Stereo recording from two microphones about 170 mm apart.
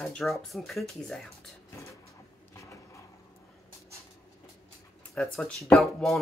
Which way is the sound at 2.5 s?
20° left (ahead or behind).